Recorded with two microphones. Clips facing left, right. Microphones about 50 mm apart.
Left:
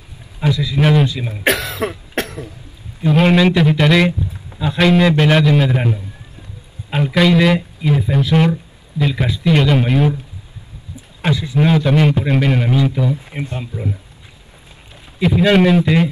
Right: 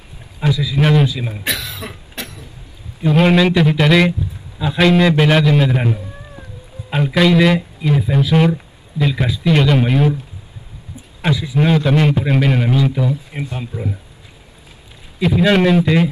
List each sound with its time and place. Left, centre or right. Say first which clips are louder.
0.4 s speech: even; centre
1.4 s cough: left 12 dB; left
3.0 s speech: even; centre
11.2 s speech: even; centre
15.1 s speech: left 1 dB; centre